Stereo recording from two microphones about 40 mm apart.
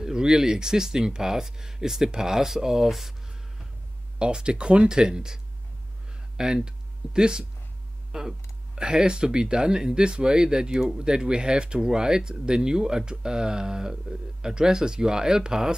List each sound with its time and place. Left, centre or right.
0.0 s speech: centre
4.2 s speech: right
8.1 s a sound: centre
8.7 s speech: right